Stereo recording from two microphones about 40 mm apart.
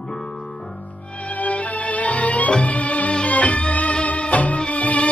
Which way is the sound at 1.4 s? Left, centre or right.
Left.